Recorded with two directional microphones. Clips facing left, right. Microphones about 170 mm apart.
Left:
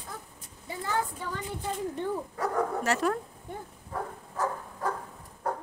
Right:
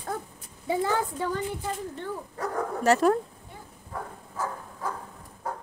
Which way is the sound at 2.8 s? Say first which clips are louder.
Right 11 dB; 35° right (ahead or behind).